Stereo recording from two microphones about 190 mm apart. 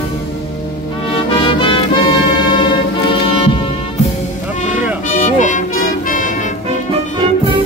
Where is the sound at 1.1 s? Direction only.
25° left (ahead or behind).